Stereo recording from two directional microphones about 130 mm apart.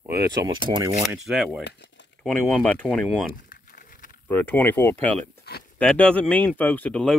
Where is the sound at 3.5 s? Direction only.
90° left.